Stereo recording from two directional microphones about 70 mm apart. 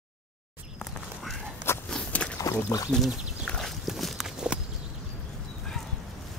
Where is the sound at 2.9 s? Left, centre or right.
Centre.